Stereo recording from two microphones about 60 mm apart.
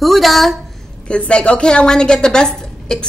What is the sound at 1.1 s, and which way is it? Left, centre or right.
A woman's voice, centre.